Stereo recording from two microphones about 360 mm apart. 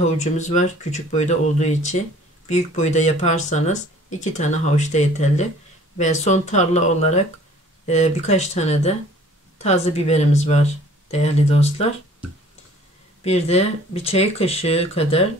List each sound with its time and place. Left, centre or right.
0.0 s speech: centre
13.2 s speech: centre